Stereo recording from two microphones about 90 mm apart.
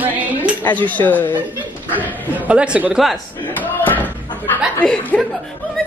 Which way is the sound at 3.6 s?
20° left (ahead or behind).